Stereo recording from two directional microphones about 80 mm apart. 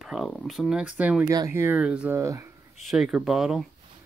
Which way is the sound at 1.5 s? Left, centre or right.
Right.